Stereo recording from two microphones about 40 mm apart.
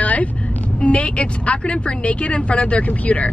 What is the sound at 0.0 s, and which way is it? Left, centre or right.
Vehicle, left.